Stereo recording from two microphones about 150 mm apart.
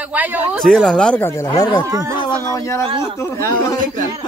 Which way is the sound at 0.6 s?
Centre (ahead or behind).